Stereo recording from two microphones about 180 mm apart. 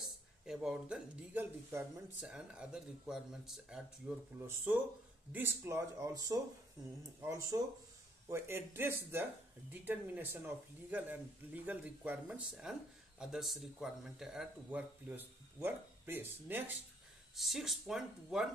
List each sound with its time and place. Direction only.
0.0 s speech: 5° right (ahead or behind)